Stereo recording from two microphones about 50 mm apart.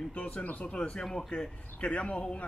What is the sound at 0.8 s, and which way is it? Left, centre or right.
A man's voice, left.